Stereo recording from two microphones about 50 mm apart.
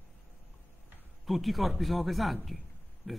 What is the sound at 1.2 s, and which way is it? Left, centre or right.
A man's voice, centre.